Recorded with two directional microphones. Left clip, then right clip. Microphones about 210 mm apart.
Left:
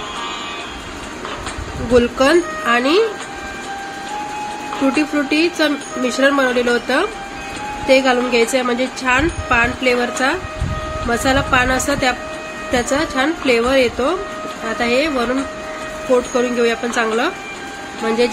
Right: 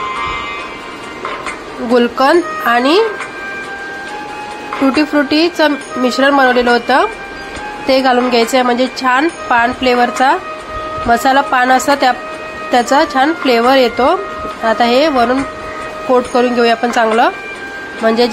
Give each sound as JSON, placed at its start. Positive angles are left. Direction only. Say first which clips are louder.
{"t": 2.0, "sound": "speech", "louder": "right 3 dB", "side_deg": -20}
{"t": 4.7, "sound": "speech", "louder": "right 5 dB", "side_deg": -20}
{"t": 16.3, "sound": "speech", "louder": "right 6 dB", "side_deg": -20}